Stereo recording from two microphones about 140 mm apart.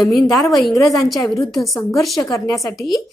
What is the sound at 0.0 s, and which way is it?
A woman's voice, centre (ahead or behind).